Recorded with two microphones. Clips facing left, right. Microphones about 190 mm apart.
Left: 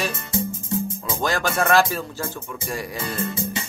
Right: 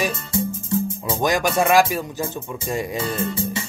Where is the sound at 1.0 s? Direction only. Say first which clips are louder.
Right 4 dB; 15° right (ahead or behind).